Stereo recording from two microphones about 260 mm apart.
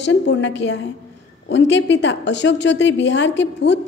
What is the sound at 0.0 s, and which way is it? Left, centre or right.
A woman's voice, left.